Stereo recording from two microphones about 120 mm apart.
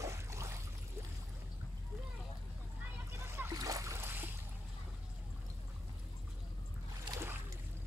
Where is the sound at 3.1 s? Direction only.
20° right (ahead or behind).